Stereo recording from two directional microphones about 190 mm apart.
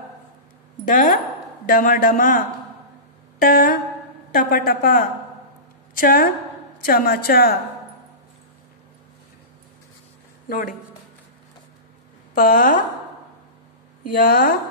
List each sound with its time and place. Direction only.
0.9 s a woman's voice: 45° left (ahead or behind)
3.3 s a sound: 50° left (ahead or behind)
4.3 s a woman's voice: 50° left (ahead or behind)
12.4 s a woman's voice: 50° left (ahead or behind)
14.1 s a woman's voice: 50° left (ahead or behind)